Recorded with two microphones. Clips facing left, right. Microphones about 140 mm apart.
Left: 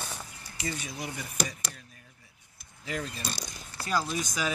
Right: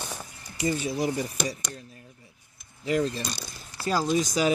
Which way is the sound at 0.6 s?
30° right (ahead or behind).